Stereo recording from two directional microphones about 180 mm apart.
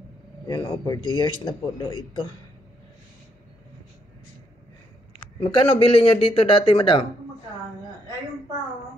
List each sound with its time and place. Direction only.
0.5 s speech: 25° left (ahead or behind)
5.4 s speech: 30° left (ahead or behind)